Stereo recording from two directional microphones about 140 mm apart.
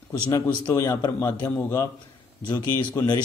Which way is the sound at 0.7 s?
20° left (ahead or behind).